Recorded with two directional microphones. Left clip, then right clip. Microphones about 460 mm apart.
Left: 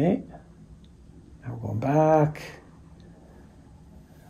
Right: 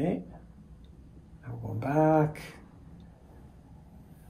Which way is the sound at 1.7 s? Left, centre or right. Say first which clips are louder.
Left 4 dB; centre.